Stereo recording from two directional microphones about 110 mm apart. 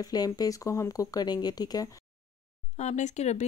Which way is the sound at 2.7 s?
90° left.